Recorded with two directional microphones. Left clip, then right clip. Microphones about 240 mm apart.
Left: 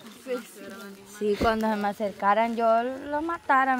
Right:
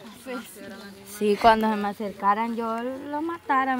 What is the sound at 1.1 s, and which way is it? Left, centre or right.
Speech, right.